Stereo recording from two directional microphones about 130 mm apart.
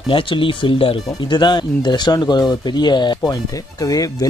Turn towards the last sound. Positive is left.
turn(degrees=25)  # may be behind; listen again after turning